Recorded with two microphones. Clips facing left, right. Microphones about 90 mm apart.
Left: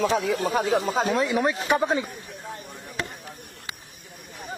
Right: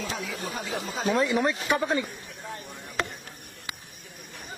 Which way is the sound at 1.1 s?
Centre (ahead or behind).